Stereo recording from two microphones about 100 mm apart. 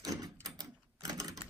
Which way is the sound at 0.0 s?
40° right (ahead or behind).